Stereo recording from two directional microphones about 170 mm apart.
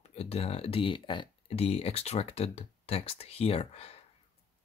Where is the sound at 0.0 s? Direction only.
40° left (ahead or behind).